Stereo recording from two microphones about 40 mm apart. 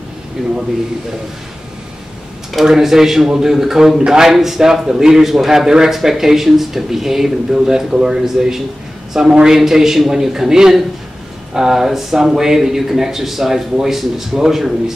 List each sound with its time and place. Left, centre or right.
0.4 s speech: centre
2.6 s speech: centre
5.7 s speech: centre